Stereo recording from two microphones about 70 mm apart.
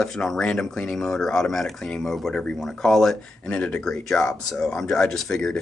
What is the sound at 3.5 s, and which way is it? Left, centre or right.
Speech, centre.